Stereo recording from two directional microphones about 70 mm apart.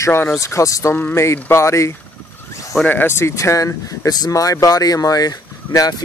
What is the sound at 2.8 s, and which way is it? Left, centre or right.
Speech, left.